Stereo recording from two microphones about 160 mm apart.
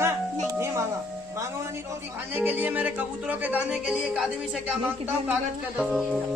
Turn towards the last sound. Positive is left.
turn(degrees=-10)  # may be behind; listen again after turning